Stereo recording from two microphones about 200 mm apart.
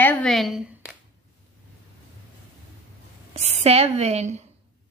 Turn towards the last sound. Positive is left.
turn(degrees=-35)  # may be behind; listen again after turning